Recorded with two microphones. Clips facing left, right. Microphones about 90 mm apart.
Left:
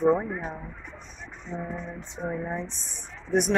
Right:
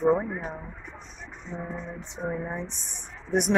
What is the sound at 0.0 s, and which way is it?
Speech, centre (ahead or behind).